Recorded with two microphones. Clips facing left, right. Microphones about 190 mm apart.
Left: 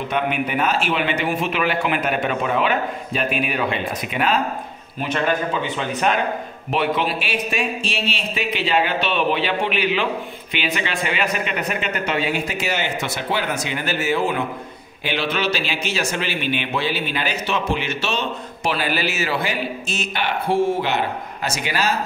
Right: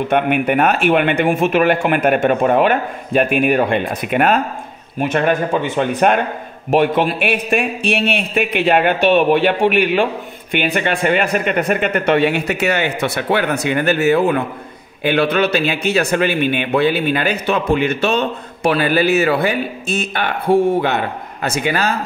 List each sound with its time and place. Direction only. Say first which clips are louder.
0.1 s speech: right 7 dB; 60° right (ahead or behind)